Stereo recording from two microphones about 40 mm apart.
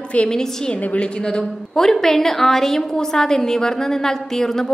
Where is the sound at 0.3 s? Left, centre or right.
Centre.